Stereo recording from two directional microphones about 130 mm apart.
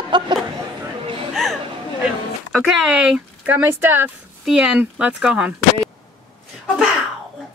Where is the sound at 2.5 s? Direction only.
5° right (ahead or behind).